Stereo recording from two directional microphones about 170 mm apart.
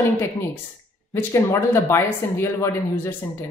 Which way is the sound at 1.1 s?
15° left (ahead or behind).